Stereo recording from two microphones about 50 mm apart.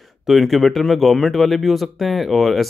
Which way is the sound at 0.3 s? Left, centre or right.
Centre.